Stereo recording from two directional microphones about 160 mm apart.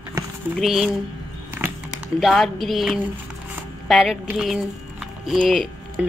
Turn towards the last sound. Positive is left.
turn(degrees=0)  # may be behind; listen again after turning